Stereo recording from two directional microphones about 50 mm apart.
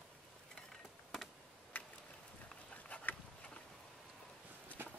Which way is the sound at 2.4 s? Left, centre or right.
Left.